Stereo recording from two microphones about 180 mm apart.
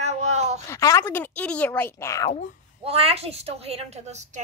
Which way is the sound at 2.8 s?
35° right (ahead or behind).